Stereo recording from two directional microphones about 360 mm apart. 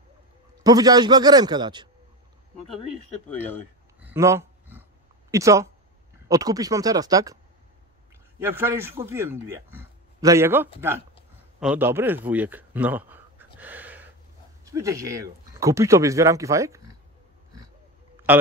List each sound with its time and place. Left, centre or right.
0.7 s speech: centre
4.0 s a sound: centre
5.3 s speech: centre
8.4 s a man's voice: centre
13.6 s a sound: centre
14.6 s speech: centre